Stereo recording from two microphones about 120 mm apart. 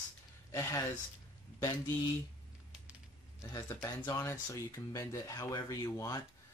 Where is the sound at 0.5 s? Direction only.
25° left (ahead or behind).